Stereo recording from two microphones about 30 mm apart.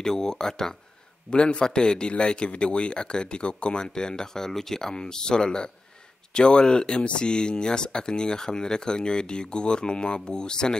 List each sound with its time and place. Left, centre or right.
0.0 s speech: left
1.3 s speech: left; by 4.9 s centre
4.9 s speech: left